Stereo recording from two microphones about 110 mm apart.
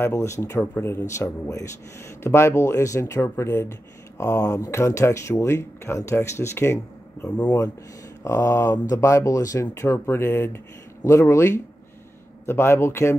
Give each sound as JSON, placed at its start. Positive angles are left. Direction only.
{"t": 0.0, "sound": "speech", "side_deg": 25}
{"t": 1.1, "sound": "speech", "side_deg": 30}
{"t": 7.2, "sound": "speech", "side_deg": 10}
{"t": 8.2, "sound": "speech", "side_deg": 25}